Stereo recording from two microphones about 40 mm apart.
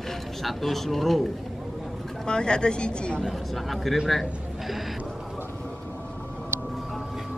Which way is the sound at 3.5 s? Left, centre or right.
Centre.